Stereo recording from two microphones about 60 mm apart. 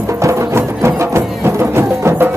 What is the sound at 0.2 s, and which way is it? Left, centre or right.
Music, right.